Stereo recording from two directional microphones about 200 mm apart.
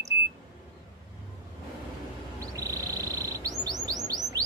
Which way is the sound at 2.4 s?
15° right (ahead or behind).